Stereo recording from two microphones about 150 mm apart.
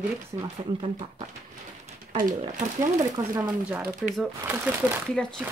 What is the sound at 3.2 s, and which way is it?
Speech, 25° right (ahead or behind).